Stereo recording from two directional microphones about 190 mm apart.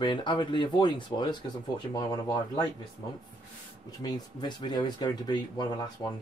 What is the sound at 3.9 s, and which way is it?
Speech, 20° left (ahead or behind).